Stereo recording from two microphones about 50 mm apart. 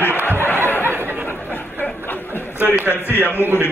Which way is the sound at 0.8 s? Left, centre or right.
Right.